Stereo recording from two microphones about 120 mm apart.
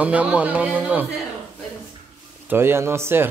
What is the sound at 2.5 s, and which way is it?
Speech, 20° right (ahead or behind).